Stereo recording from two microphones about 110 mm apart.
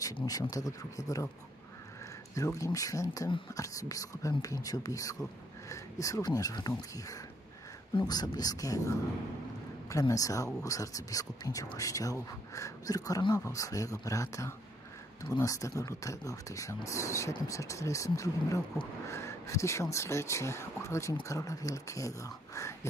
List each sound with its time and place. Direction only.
0.0 s speech: 35° left (ahead or behind)
2.3 s speech: 30° left (ahead or behind)
8.1 s speech: 35° left (ahead or behind)